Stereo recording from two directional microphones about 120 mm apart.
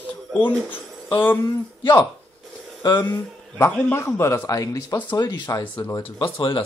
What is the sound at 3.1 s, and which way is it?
A man's voice, 20° left (ahead or behind).